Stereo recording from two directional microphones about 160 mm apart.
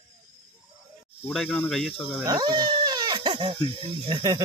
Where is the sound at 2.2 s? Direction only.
25° right (ahead or behind).